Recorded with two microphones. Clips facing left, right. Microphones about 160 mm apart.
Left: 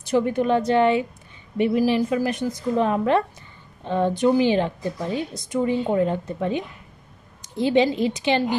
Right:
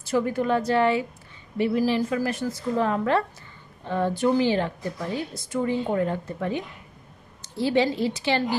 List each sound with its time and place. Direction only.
0.0 s a woman's voice: 20° left (ahead or behind)